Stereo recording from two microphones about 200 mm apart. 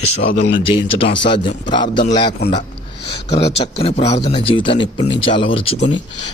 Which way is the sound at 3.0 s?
55° left (ahead or behind).